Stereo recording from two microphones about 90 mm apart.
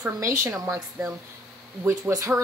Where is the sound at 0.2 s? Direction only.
30° right (ahead or behind).